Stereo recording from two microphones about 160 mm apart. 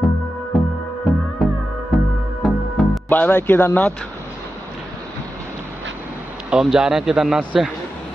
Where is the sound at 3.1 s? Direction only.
10° left (ahead or behind).